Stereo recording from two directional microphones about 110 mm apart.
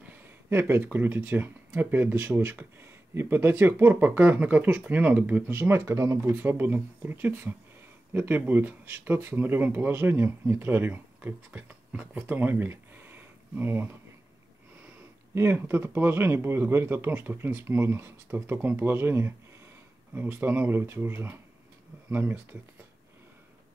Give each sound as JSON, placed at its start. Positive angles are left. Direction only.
{"t": 0.0, "sound": "a sound", "side_deg": -20}
{"t": 0.8, "sound": "speech", "side_deg": -20}
{"t": 15.3, "sound": "speech", "side_deg": -20}